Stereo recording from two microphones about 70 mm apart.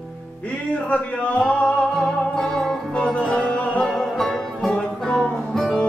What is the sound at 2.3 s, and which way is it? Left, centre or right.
Music, centre.